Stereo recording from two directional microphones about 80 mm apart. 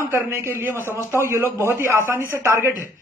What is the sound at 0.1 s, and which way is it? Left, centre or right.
A man's voice, right.